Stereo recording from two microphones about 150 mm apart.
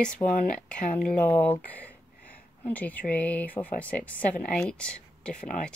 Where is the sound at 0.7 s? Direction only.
5° left (ahead or behind).